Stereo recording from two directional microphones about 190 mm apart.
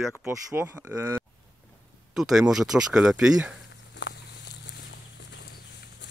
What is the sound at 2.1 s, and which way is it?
Speech, centre (ahead or behind).